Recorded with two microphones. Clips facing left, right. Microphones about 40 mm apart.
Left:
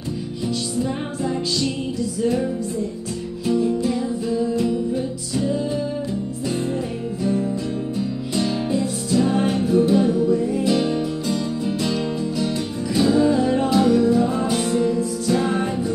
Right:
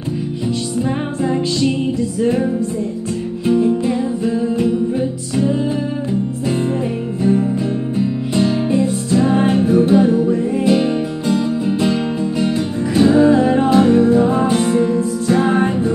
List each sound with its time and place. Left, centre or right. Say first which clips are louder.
0.8 s music: right 6 dB; right
8.0 s music: right 8 dB; right